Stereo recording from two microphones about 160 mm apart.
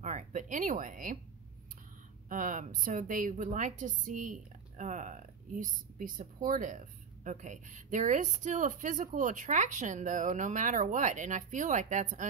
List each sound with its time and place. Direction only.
0.0 s speech: 50° right (ahead or behind)
2.2 s a woman's voice: 55° right (ahead or behind)